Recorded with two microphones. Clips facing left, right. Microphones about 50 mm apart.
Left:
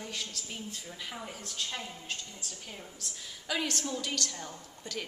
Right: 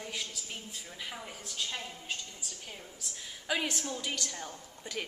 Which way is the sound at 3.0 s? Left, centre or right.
Centre.